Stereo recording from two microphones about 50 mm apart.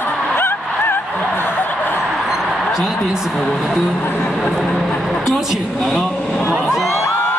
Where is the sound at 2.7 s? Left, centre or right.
Centre.